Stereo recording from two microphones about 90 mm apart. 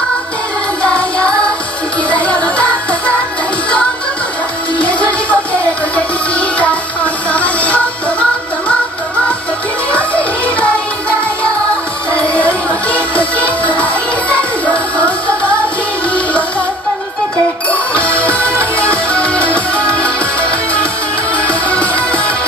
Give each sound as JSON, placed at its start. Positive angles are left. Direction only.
{"t": 0.8, "sound": "music", "side_deg": 15}
{"t": 4.7, "sound": "music", "side_deg": 15}
{"t": 9.9, "sound": "music", "side_deg": 15}
{"t": 17.6, "sound": "music", "side_deg": 15}